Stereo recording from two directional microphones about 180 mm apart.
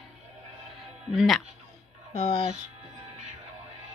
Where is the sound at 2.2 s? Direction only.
35° left (ahead or behind).